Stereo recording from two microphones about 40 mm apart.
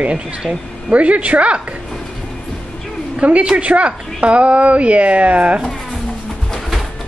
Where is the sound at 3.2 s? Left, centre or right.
Right.